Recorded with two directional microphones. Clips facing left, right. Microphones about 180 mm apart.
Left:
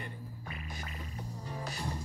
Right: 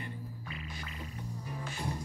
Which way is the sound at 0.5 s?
45° left (ahead or behind).